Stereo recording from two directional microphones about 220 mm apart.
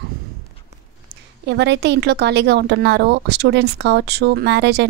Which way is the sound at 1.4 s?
50° right (ahead or behind).